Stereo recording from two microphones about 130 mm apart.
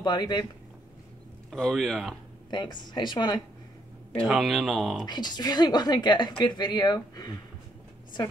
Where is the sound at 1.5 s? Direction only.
Centre (ahead or behind).